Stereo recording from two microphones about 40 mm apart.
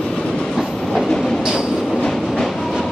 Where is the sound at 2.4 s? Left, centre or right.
Centre.